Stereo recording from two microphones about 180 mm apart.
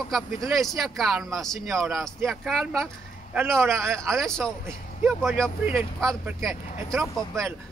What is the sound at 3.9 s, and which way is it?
A man's voice, 5° left (ahead or behind).